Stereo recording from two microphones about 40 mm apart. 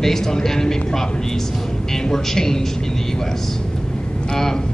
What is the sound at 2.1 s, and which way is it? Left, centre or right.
Speech, centre.